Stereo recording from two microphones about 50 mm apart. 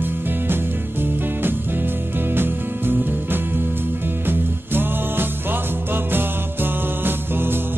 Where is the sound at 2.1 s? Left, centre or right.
Right.